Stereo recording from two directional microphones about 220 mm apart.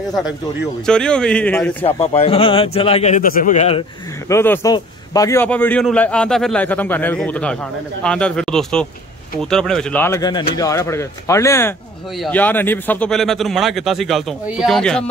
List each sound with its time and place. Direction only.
0.8 s speech: 5° left (ahead or behind)
1.8 s speech: 25° left (ahead or behind)
4.3 s a man's voice: 10° left (ahead or behind)